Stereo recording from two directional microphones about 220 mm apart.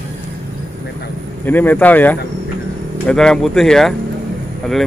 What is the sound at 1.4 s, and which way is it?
Speech, 10° left (ahead or behind).